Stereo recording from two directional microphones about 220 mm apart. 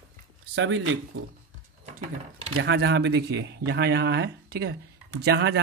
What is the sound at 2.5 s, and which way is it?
Speech, 50° right (ahead or behind).